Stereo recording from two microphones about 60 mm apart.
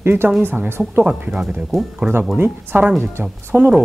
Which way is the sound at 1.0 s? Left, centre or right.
Centre.